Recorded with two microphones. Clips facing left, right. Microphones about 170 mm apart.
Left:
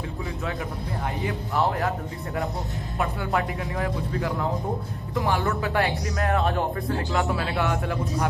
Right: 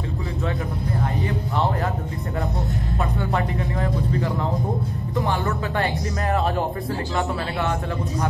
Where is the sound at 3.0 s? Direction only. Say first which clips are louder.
Even; 5° left (ahead or behind).